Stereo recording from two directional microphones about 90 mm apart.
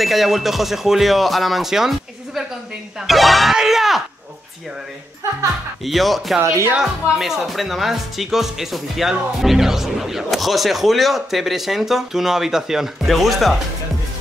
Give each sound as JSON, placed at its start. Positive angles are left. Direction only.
{"t": 0.0, "sound": "speech", "side_deg": 0}
{"t": 5.9, "sound": "speech", "side_deg": 0}
{"t": 6.4, "sound": "speech", "side_deg": -30}
{"t": 6.7, "sound": "speech", "side_deg": -5}